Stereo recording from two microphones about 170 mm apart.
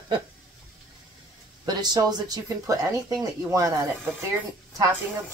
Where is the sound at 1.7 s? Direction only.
25° right (ahead or behind).